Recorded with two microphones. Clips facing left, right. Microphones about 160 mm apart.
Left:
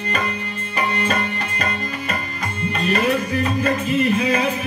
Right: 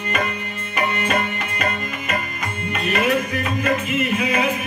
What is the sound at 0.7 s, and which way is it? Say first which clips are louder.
Music: even; 35° left (ahead or behind).